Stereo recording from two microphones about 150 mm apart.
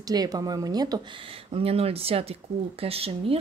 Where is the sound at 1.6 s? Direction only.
40° right (ahead or behind).